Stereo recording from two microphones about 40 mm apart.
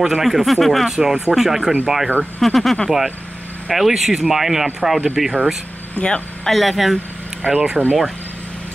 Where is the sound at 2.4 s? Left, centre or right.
Centre.